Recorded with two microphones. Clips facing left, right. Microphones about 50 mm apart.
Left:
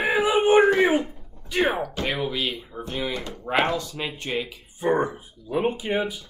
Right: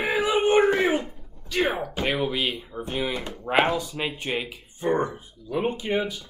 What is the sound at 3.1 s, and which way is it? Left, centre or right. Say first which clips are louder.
Speech: even; centre.